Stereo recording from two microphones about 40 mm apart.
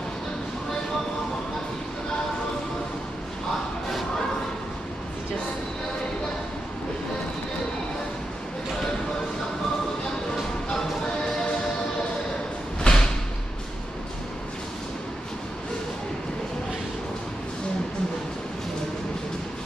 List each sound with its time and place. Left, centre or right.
12.8 s slam: centre